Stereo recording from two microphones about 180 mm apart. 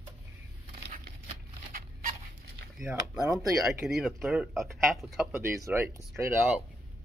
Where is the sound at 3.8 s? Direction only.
Centre (ahead or behind).